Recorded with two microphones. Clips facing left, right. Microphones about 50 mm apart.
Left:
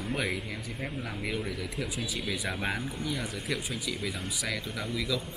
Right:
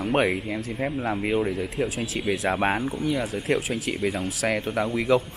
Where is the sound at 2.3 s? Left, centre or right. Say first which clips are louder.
Right 11 dB; right.